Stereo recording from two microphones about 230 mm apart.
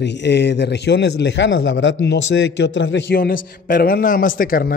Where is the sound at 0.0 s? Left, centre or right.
Left.